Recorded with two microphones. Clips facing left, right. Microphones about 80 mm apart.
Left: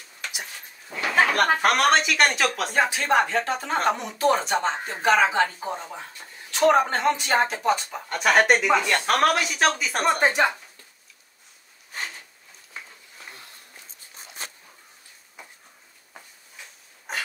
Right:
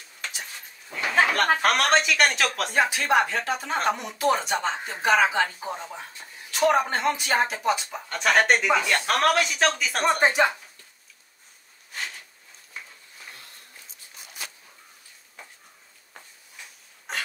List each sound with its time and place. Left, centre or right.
0.3 s dog: centre
1.3 s speech: centre
6.5 s speech: centre
14.1 s dog: left
17.1 s a sound: centre